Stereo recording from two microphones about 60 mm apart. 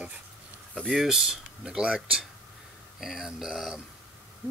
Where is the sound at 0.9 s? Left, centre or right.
Centre.